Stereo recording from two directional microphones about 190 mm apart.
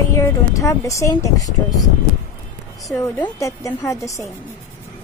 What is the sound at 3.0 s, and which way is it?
Speech, 15° left (ahead or behind).